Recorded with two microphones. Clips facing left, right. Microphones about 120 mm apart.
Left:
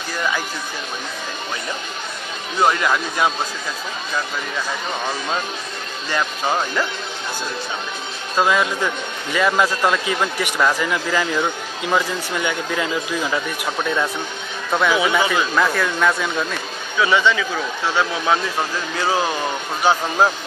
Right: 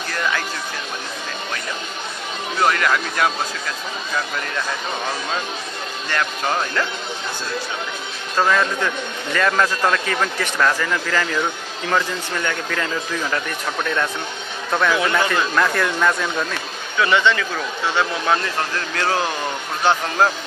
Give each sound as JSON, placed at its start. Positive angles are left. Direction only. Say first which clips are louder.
{"t": 0.1, "sound": "speech", "louder": "left 1 dB", "side_deg": 10}
{"t": 2.6, "sound": "a man's voice", "louder": "left 1 dB", "side_deg": 15}
{"t": 6.0, "sound": "a man's voice", "louder": "left 1 dB", "side_deg": 10}
{"t": 8.4, "sound": "a man's voice", "louder": "even", "side_deg": 10}
{"t": 14.7, "sound": "a man's voice", "louder": "left 1 dB", "side_deg": 5}